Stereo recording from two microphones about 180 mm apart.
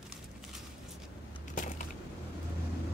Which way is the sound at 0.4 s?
Centre (ahead or behind).